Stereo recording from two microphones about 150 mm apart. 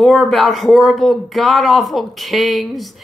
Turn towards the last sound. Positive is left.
turn(degrees=0)  # may be behind; listen again after turning